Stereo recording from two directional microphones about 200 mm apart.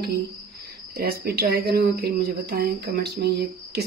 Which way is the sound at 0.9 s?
50° right (ahead or behind).